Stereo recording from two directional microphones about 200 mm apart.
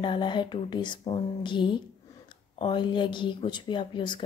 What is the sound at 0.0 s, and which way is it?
Speech, 25° left (ahead or behind).